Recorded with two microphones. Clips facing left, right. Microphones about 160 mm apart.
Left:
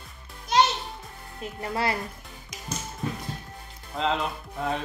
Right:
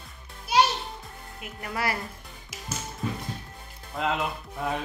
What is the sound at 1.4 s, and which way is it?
Speech, 30° left (ahead or behind).